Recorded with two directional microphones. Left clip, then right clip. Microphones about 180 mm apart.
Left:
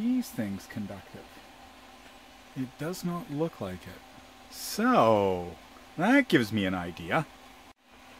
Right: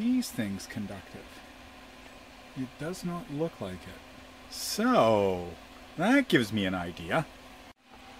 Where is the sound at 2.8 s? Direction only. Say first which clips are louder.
Left 2 dB; 35° left (ahead or behind).